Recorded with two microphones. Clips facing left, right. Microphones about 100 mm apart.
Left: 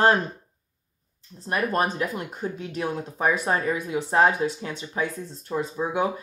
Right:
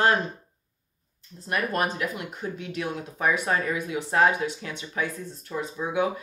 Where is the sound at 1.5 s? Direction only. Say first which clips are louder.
Left 2 dB; 30° left (ahead or behind).